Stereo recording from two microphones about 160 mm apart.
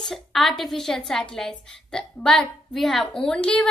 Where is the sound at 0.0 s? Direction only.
Centre (ahead or behind).